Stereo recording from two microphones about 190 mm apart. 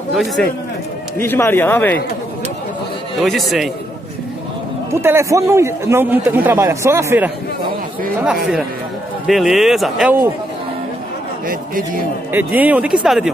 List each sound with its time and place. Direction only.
0.1 s speech: centre (ahead or behind)
1.1 s speech: 10° left (ahead or behind)
3.2 s speech: centre (ahead or behind)
5.0 s a man's voice: 15° right (ahead or behind)
9.3 s speech: centre (ahead or behind)
11.4 s a man's voice: 50° right (ahead or behind)
12.3 s a man's voice: 10° right (ahead or behind)